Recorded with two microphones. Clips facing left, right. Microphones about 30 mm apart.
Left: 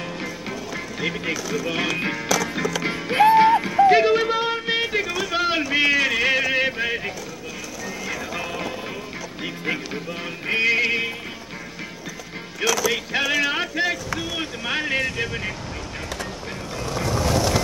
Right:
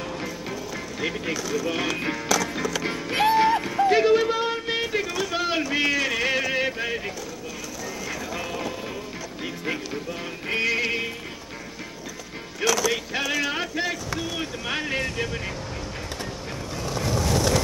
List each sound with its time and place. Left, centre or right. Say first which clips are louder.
0.2 s music: left 1 dB; centre
2.2 s music: left 1 dB; centre
5.3 s a sound: left 5 dB; centre
7.8 s music: left 3 dB; centre
12.6 s mechanisms: left 1 dB; centre
13.1 s speech: left 4 dB; centre
14.4 s music: left 3 dB; centre
16.9 s skateboard: left 2 dB; centre